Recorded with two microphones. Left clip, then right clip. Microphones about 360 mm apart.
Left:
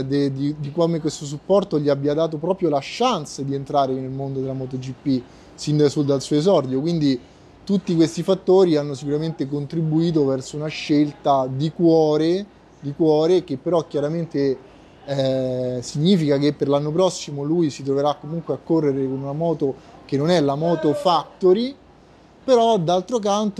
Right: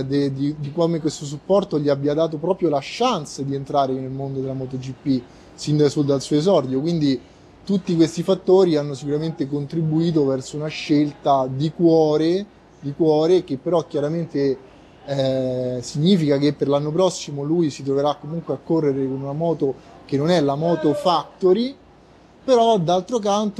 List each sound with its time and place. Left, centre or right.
0.0 s speech: left